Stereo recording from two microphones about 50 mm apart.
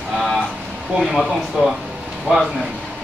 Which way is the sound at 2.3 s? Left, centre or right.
Right.